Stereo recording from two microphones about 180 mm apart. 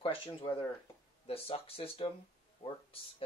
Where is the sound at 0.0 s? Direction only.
30° left (ahead or behind).